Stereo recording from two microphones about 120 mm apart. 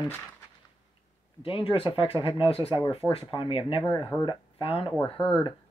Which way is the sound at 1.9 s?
50° left (ahead or behind).